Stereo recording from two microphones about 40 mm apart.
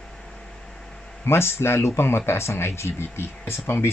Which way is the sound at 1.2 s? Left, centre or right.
Left.